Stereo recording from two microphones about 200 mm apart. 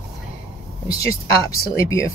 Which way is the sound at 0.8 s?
15° left (ahead or behind).